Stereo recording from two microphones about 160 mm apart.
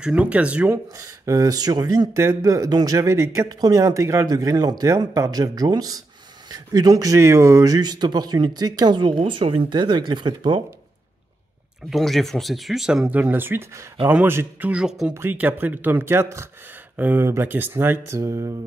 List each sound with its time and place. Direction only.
0.0 s speech: 5° right (ahead or behind)
0.9 s speech: 20° right (ahead or behind)
11.9 s speech: centre (ahead or behind); by 18.5 s 20° right (ahead or behind)